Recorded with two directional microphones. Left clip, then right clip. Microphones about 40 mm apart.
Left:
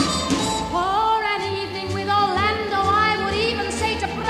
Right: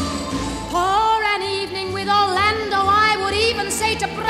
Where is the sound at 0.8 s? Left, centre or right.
Right.